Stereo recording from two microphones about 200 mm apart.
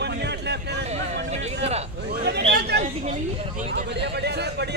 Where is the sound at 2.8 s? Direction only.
35° right (ahead or behind).